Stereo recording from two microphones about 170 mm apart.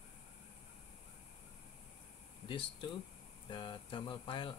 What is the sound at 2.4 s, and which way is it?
Speech, 30° left (ahead or behind).